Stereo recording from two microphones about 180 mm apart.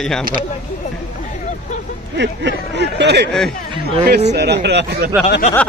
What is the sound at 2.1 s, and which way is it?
Speech, 75° right (ahead or behind).